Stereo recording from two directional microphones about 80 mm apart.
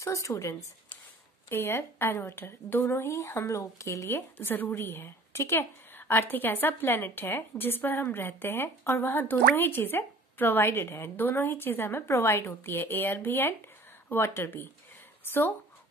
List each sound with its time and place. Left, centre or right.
0.0 s speech: left
1.5 s a woman's voice: left